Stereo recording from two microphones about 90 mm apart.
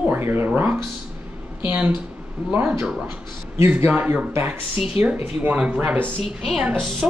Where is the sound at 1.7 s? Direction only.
25° right (ahead or behind).